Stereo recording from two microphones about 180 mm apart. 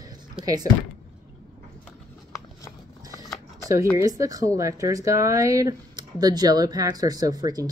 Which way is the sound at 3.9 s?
20° right (ahead or behind).